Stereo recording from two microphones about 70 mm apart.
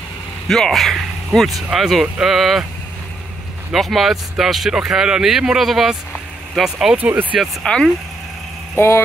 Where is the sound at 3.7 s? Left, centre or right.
Centre.